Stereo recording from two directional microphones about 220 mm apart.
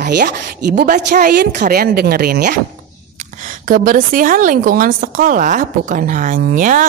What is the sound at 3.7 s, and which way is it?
A woman's voice, 40° right (ahead or behind).